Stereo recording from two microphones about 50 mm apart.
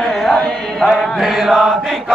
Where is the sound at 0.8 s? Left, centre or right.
Centre.